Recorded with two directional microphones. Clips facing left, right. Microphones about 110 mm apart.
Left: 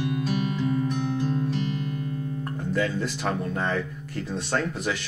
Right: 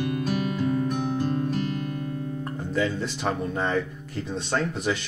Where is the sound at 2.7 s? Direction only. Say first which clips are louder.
Even; 15° right (ahead or behind).